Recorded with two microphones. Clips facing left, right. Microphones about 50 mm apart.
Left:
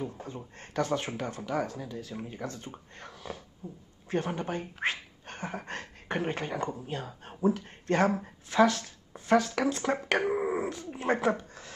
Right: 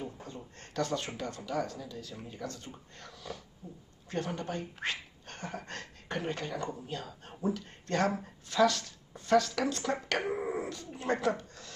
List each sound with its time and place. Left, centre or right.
0.0 s a sound: left
0.6 s speech: left
2.4 s speech: left